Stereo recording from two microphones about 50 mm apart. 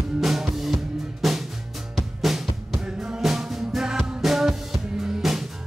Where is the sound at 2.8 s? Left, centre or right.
Centre.